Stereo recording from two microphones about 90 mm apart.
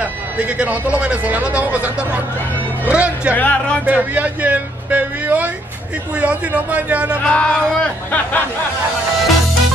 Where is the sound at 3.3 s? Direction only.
20° left (ahead or behind).